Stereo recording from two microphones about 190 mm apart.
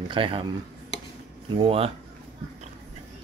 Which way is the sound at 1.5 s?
30° right (ahead or behind).